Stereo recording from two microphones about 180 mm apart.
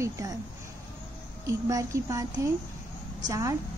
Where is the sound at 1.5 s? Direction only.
20° right (ahead or behind).